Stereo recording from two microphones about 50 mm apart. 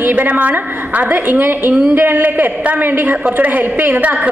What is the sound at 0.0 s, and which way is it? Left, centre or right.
A woman's voice, right.